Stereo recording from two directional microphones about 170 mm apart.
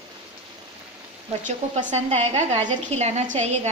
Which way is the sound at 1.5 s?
45° right (ahead or behind).